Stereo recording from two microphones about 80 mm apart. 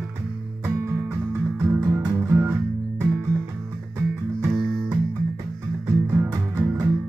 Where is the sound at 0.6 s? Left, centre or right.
Right.